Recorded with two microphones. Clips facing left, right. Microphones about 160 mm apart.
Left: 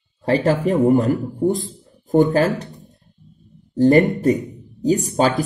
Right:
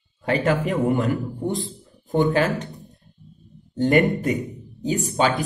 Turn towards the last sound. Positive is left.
turn(degrees=40)  # may be behind; listen again after turning